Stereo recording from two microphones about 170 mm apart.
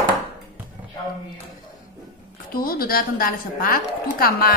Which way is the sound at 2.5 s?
60° left (ahead or behind).